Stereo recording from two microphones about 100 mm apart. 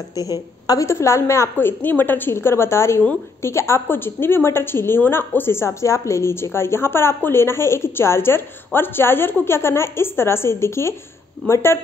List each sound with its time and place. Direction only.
0.1 s a woman's voice: 40° left (ahead or behind)